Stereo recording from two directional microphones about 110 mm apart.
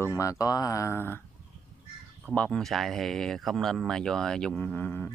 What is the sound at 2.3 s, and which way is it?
Speech, 10° left (ahead or behind).